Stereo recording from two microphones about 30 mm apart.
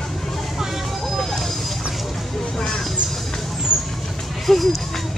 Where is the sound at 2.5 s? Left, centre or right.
Left.